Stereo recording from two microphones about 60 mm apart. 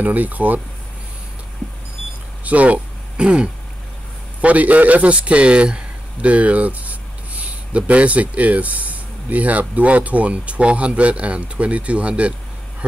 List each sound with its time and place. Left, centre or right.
0.0 s speech: right
2.4 s a man's voice: right